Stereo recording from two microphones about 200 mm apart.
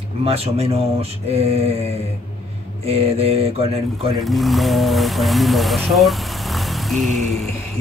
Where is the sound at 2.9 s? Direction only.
30° right (ahead or behind).